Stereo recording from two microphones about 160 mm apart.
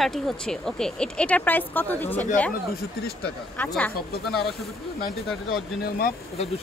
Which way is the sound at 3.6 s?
10° left (ahead or behind).